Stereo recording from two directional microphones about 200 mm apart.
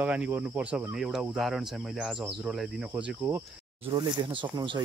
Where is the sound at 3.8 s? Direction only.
25° right (ahead or behind).